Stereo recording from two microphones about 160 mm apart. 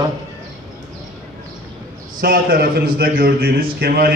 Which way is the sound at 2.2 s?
65° right (ahead or behind).